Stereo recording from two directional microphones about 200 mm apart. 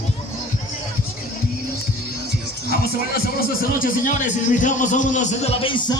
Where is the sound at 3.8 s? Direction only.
40° left (ahead or behind).